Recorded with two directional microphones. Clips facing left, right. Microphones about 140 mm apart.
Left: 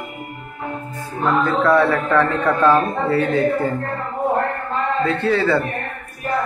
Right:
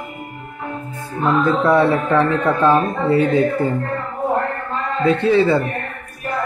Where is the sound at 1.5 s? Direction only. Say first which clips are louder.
Right 1 dB; 20° right (ahead or behind).